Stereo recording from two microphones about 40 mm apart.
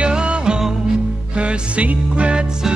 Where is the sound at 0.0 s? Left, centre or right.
Right.